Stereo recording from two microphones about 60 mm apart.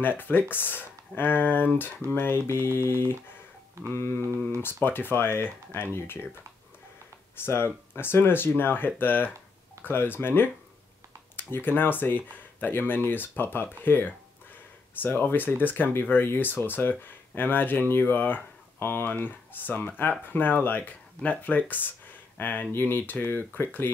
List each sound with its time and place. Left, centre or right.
0.2 s speech: left
3.9 s mantra: left
4.6 s speech: left
7.3 s speech: left